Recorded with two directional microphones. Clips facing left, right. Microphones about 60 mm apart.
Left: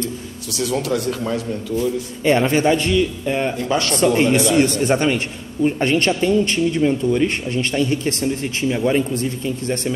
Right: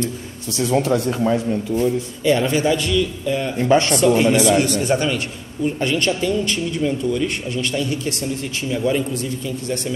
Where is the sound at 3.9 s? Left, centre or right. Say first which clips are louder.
Right 1 dB; left.